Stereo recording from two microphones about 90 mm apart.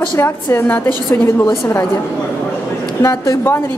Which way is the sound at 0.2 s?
25° left (ahead or behind).